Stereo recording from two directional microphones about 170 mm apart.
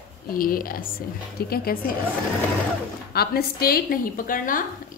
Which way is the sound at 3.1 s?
65° left (ahead or behind).